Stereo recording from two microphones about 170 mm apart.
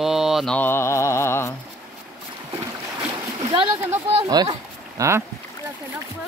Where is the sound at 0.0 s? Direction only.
Centre (ahead or behind).